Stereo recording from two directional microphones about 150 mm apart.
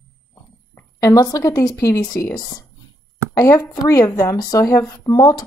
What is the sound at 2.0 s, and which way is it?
Speech, 5° left (ahead or behind).